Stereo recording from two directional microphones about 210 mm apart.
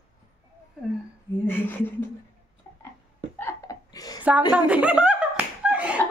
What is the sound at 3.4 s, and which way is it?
Laughter, 15° left (ahead or behind).